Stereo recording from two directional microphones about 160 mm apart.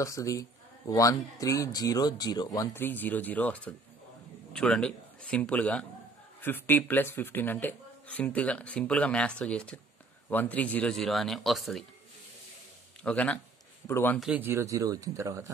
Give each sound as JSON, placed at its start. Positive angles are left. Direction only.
{"t": 0.0, "sound": "a man's voice", "side_deg": 20}
{"t": 13.0, "sound": "speech", "side_deg": 10}
{"t": 14.2, "sound": "speech", "side_deg": -10}